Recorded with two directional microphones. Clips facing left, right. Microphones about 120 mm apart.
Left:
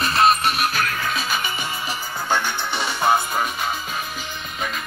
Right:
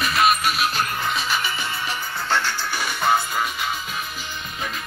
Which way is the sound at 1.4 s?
15° left (ahead or behind).